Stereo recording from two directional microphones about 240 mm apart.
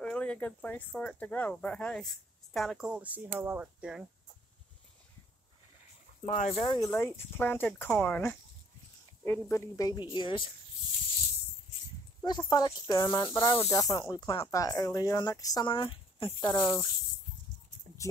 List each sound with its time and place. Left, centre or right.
0.0 s speech: centre
6.2 s speech: left
12.2 s speech: centre